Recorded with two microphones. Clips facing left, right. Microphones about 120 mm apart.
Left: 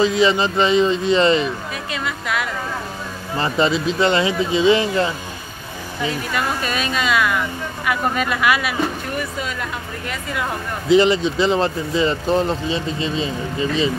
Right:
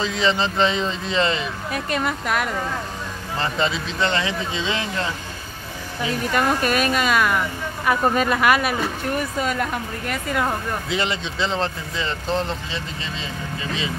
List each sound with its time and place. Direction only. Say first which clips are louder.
0.0 s speech: left 5 dB; 10° left (ahead or behind)
1.7 s speech: right 3 dB; 50° right (ahead or behind)
3.3 s speech: left 5 dB; 5° left (ahead or behind)
6.3 s speech: right 6 dB; 50° right (ahead or behind)
7.8 s speech: right 2 dB; 35° right (ahead or behind)
10.9 s speech: left 14 dB; centre (ahead or behind)